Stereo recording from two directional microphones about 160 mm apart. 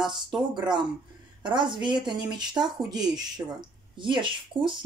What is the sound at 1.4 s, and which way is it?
A woman's voice, 30° right (ahead or behind).